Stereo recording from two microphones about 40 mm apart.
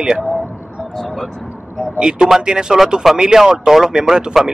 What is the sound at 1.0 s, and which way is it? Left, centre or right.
Speech, centre.